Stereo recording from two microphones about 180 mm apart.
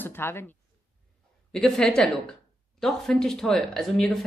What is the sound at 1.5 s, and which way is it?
Speech, 5° left (ahead or behind).